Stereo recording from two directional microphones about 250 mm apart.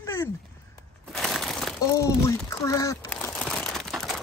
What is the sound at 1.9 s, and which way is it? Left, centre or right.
Crumpling, centre.